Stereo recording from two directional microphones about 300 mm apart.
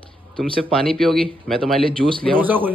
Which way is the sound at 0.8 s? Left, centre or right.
Centre.